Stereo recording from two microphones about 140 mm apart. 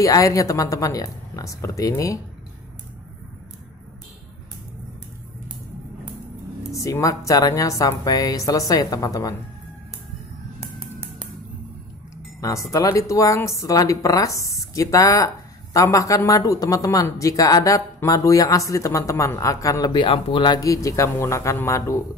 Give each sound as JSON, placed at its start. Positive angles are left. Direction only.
{"t": 0.0, "sound": "a woman's voice", "side_deg": 25}
{"t": 6.7, "sound": "a woman's voice", "side_deg": 20}
{"t": 12.4, "sound": "a woman's voice", "side_deg": 25}